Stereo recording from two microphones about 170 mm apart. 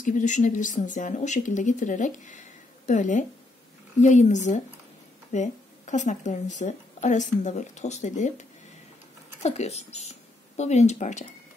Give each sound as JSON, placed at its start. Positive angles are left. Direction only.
{"t": 0.0, "sound": "speech", "side_deg": 45}
{"t": 9.4, "sound": "speech", "side_deg": 40}